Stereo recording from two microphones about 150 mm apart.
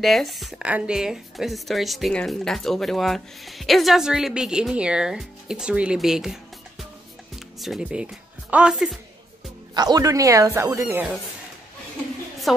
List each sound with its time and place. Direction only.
0.0 s a woman's voice: centre (ahead or behind)
9.8 s speech: 25° right (ahead or behind)
12.5 s a woman's voice: centre (ahead or behind)